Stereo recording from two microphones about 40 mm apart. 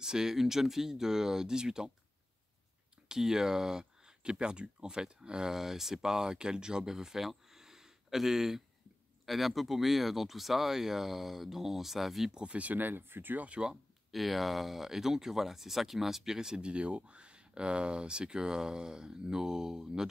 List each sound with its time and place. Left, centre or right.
0.0 s speech: centre
3.1 s speech: centre
12.3 s speech: right
12.5 s speech: right
14.1 s speech: centre